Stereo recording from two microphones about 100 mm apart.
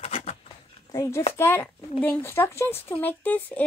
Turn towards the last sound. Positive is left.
turn(degrees=15)  # may be behind; listen again after turning